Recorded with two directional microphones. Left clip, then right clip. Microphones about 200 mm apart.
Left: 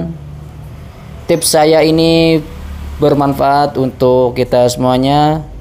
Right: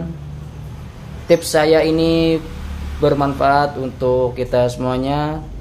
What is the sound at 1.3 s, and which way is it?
Speech, 35° left (ahead or behind).